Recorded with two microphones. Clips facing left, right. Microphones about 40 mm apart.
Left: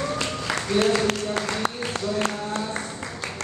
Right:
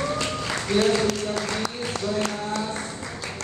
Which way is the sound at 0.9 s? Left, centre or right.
Left.